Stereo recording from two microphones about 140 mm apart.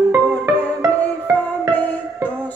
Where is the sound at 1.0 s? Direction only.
10° left (ahead or behind).